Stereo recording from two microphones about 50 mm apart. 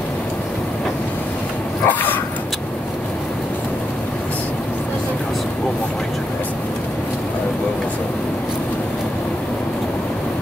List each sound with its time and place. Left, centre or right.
1.9 s dog: left